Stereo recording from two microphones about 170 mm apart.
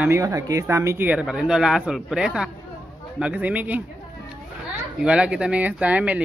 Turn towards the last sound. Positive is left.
turn(degrees=-10)  # may be behind; listen again after turning